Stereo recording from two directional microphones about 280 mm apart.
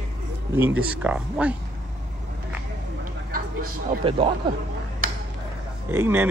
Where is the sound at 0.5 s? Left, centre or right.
Centre.